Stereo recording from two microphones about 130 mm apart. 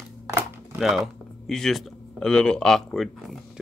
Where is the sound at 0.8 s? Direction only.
Centre (ahead or behind).